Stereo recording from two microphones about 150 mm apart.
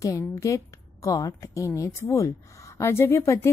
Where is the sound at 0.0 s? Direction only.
20° left (ahead or behind).